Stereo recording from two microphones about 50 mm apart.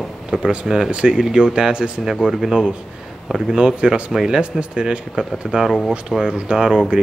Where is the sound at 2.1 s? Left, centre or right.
Centre.